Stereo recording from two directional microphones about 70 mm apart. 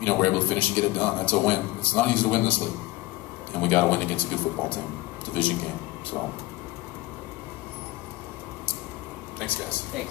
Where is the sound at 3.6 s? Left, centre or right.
Left.